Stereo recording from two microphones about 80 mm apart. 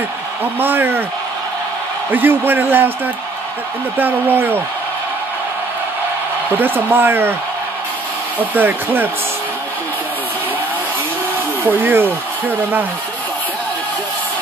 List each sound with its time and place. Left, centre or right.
0.6 s speech: right
2.0 s speech: right
4.0 s speech: right
6.5 s speech: right
8.4 s speech: right
11.6 s speech: right